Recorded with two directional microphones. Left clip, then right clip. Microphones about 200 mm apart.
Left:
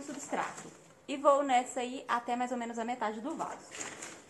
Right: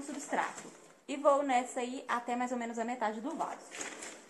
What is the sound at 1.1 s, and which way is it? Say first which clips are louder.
A woman's voice: left 2 dB; 20° left (ahead or behind).